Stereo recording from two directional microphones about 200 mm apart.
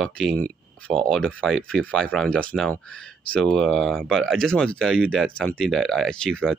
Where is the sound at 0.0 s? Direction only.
Centre (ahead or behind).